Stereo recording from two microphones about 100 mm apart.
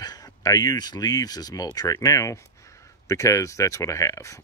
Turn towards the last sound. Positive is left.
turn(degrees=30)  # may be behind; listen again after turning